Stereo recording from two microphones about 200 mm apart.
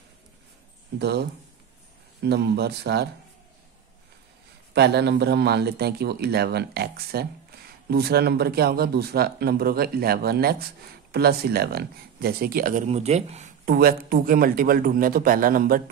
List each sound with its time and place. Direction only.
0.9 s speech: 55° right (ahead or behind)
2.2 s speech: 55° right (ahead or behind)
4.7 s a man's voice: 55° right (ahead or behind); by 13.5 s 35° right (ahead or behind)
13.7 s a man's voice: 50° right (ahead or behind)